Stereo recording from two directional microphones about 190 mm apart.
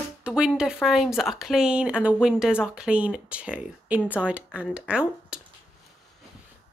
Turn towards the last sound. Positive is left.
turn(degrees=-5)  # may be behind; listen again after turning